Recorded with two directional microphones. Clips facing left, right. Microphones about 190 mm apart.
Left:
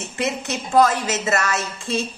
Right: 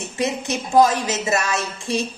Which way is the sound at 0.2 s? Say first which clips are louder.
Right 2 dB; 15° right (ahead or behind).